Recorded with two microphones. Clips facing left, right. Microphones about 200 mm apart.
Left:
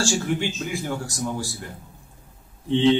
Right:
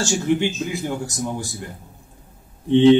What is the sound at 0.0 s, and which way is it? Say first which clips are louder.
Speech: right 4 dB; 20° right (ahead or behind).